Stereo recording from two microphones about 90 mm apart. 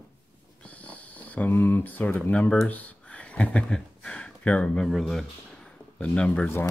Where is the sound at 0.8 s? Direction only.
15° left (ahead or behind).